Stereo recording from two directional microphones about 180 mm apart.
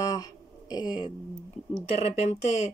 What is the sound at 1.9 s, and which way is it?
Speech, 35° left (ahead or behind).